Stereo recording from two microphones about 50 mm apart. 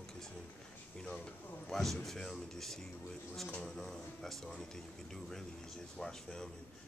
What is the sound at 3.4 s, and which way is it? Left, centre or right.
Speech, centre.